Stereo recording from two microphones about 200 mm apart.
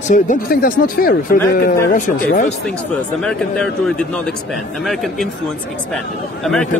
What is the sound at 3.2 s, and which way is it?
Speech, 5° left (ahead or behind).